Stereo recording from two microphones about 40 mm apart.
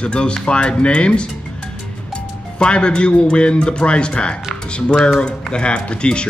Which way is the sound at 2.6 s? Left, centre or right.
Left.